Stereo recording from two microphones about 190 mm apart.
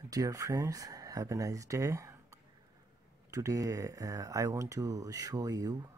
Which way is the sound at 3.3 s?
15° right (ahead or behind).